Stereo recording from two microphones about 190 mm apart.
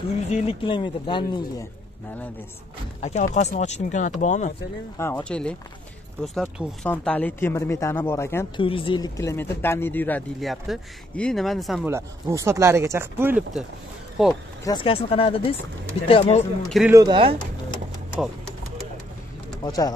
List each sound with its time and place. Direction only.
0.3 s speech: 30° left (ahead or behind)
3.0 s speech: 35° left (ahead or behind)
4.9 s speech: 10° left (ahead or behind)
8.5 s speech: 25° left (ahead or behind); by 11.8 s centre (ahead or behind)
11.8 s speech: 15° right (ahead or behind)
14.2 s speech: centre (ahead or behind)
14.6 s speech: 25° left (ahead or behind)
16.6 s speech: centre (ahead or behind)
16.9 s speech: 20° right (ahead or behind)
19.6 s speech: 20° left (ahead or behind)